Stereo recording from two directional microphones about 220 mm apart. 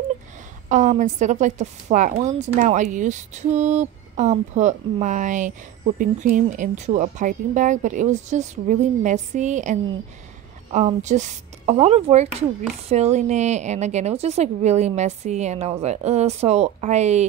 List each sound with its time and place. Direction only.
0.7 s a woman's voice: 35° right (ahead or behind)